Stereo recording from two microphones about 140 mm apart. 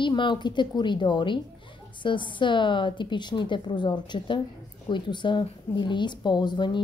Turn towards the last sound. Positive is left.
turn(degrees=30)  # may be behind; listen again after turning